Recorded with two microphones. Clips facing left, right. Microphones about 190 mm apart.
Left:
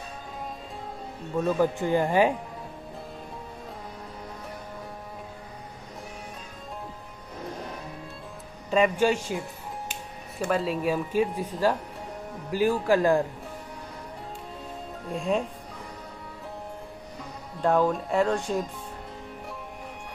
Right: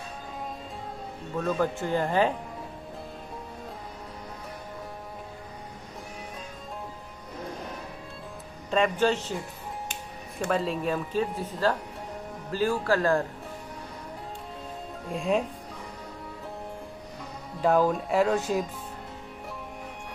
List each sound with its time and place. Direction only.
1.4 s speech: 5° left (ahead or behind)
8.6 s speech: 5° left (ahead or behind)
10.4 s speech: 5° left (ahead or behind)
15.0 s speech: centre (ahead or behind)
17.6 s speech: 5° right (ahead or behind)